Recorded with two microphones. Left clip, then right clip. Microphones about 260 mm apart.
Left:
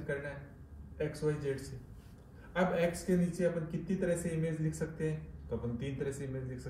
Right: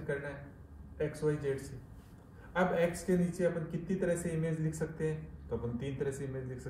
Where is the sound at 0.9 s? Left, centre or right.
Centre.